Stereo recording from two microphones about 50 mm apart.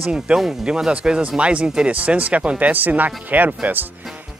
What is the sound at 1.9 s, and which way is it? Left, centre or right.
Speech, right.